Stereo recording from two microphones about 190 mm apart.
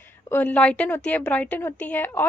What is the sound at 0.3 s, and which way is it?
A woman's voice, 10° left (ahead or behind).